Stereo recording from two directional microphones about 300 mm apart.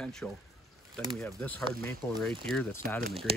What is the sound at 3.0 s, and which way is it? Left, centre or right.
Speech, centre.